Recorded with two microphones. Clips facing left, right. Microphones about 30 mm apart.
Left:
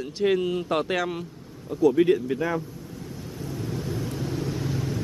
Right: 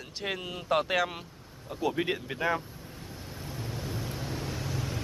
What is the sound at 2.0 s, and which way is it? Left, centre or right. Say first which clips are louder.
Speech: left 8 dB; centre.